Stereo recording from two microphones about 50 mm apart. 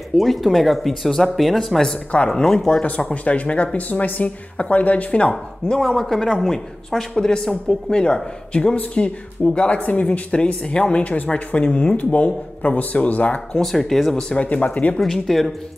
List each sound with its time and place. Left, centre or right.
0.1 s speech: centre
2.1 s speech: centre
3.1 s speech: left
5.9 s speech: centre
9.8 s speech: left
13.6 s speech: centre
14.1 s speech: left
15.0 s speech: centre